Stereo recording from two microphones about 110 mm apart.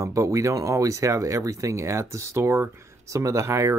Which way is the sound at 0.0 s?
30° right (ahead or behind).